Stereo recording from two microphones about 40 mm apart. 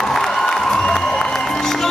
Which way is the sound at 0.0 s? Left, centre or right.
Centre.